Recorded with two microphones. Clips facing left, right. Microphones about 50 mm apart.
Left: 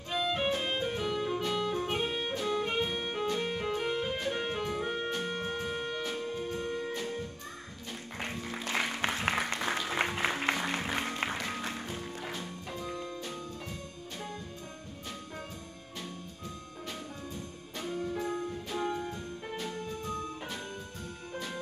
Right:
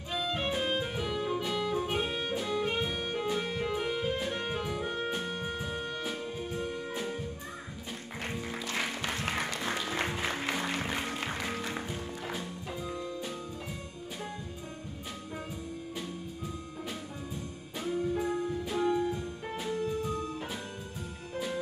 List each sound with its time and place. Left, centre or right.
0.1 s music: centre
8.3 s music: centre
8.5 s music: left
9.6 s music: centre
17.7 s music: centre